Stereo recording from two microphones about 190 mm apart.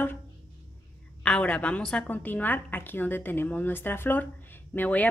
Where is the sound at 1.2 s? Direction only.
5° left (ahead or behind).